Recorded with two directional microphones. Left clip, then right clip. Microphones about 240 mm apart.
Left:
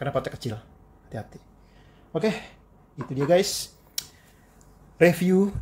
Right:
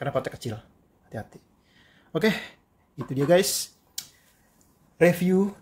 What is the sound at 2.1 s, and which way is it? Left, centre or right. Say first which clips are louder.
Speech: right 1 dB; centre.